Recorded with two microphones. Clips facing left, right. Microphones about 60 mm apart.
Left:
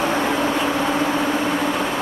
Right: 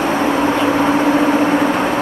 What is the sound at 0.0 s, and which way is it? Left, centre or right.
Vehicle, centre.